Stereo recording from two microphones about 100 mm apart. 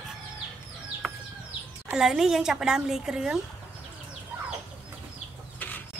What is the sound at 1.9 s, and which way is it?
A woman's voice, 5° right (ahead or behind).